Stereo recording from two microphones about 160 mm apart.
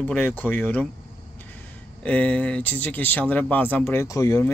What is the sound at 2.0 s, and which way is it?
Speech, 10° left (ahead or behind).